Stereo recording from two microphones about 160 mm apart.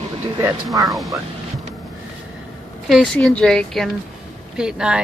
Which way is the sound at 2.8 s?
Centre (ahead or behind).